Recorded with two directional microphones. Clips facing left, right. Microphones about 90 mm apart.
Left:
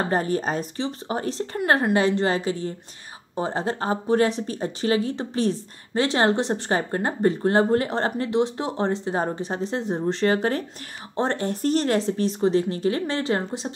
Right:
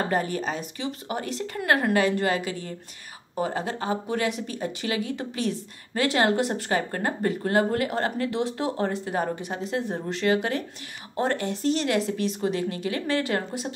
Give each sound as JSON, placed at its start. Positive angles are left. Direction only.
{"t": 0.1, "sound": "a woman's voice", "side_deg": 35}
{"t": 11.4, "sound": "speech", "side_deg": 45}